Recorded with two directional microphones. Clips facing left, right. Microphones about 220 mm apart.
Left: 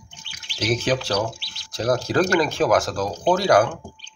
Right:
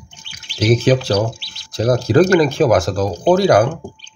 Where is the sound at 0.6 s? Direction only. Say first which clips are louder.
Right 8 dB; 15° right (ahead or behind).